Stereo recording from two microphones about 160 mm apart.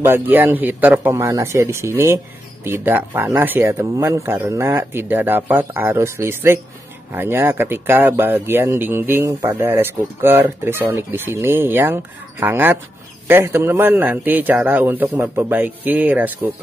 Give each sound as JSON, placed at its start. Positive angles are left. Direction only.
{"t": 0.0, "sound": "speech", "side_deg": -15}